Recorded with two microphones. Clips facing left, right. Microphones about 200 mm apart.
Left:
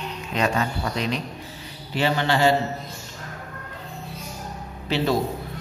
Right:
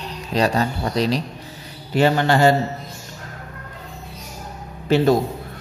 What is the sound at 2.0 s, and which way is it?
Speech, 45° right (ahead or behind).